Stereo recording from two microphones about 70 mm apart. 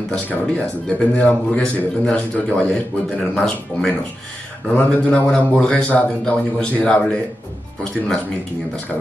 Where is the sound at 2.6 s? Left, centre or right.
Centre.